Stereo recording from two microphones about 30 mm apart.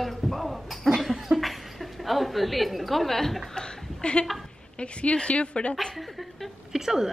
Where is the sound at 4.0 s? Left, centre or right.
Left.